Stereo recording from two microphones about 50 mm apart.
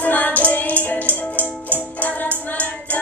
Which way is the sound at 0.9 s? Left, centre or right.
Left.